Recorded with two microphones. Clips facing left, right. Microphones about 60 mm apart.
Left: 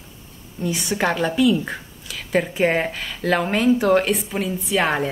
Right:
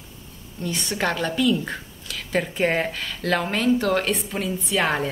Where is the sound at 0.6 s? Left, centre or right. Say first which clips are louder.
Left 4 dB; centre.